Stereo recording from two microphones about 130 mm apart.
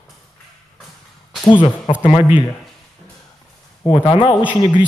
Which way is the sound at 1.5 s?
35° left (ahead or behind).